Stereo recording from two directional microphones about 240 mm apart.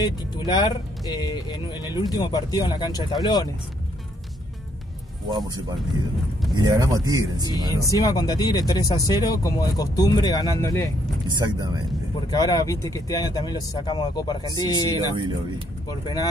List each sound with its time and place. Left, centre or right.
0.0 s speech: centre
6.5 s speech: centre
7.9 s speech: centre
11.3 s speech: centre
12.3 s speech: centre